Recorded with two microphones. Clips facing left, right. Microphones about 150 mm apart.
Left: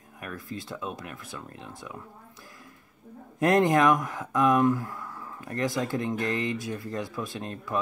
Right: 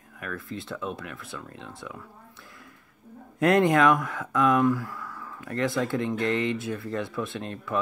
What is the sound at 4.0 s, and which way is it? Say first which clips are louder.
Speech: even; 20° left (ahead or behind).